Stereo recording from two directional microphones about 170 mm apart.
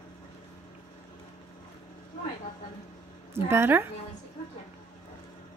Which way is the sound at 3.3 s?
15° right (ahead or behind).